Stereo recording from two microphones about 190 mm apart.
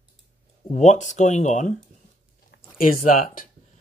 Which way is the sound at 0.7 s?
40° left (ahead or behind).